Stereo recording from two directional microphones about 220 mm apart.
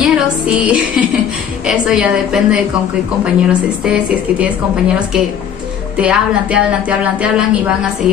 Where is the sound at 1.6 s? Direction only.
5° right (ahead or behind).